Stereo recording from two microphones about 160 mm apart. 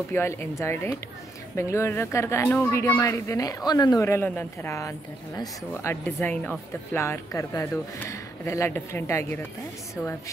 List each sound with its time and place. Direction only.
0.1 s a woman's voice: 15° left (ahead or behind)